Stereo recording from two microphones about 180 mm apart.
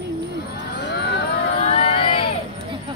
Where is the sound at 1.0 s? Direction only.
65° left (ahead or behind).